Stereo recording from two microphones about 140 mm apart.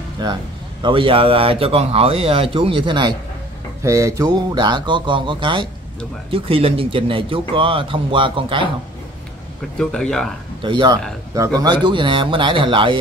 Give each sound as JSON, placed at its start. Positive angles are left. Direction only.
{"t": 0.2, "sound": "speech", "side_deg": -30}
{"t": 3.8, "sound": "speech", "side_deg": -20}
{"t": 9.8, "sound": "speech", "side_deg": 5}
{"t": 10.6, "sound": "speech", "side_deg": -35}